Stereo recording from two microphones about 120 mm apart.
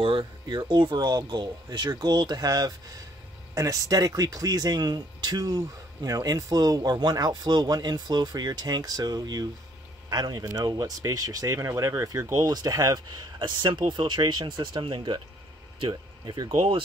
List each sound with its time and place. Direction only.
0.0 s speech: 45° right (ahead or behind)